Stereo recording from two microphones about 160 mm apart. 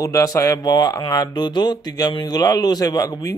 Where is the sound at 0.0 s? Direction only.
20° left (ahead or behind).